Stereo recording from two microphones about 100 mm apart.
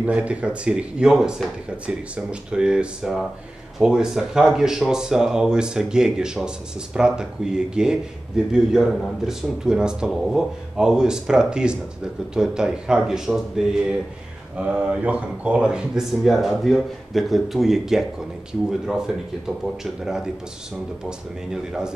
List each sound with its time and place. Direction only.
0.0 s speech: 15° right (ahead or behind)